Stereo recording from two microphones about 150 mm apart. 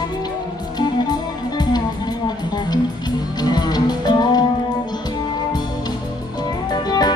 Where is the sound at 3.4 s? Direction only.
25° left (ahead or behind).